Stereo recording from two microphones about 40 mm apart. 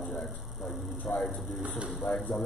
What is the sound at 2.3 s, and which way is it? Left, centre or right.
Speech, centre.